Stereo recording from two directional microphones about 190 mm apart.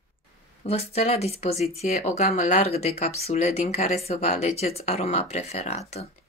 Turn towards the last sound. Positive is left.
turn(degrees=35)  # may be behind; listen again after turning